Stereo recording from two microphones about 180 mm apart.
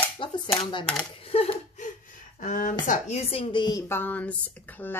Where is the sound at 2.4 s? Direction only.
50° left (ahead or behind).